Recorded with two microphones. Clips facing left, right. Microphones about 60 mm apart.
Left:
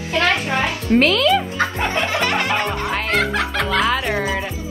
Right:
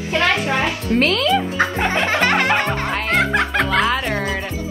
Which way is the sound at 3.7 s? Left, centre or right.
Centre.